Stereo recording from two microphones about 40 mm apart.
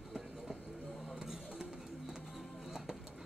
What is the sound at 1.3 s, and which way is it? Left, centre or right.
Music, centre.